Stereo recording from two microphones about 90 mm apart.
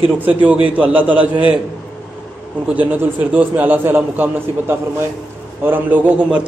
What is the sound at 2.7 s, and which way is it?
A man's voice, 20° right (ahead or behind).